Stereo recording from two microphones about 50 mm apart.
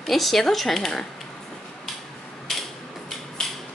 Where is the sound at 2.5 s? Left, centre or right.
Centre.